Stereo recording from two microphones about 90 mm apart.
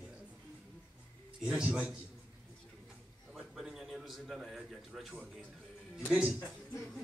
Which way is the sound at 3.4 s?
5° right (ahead or behind).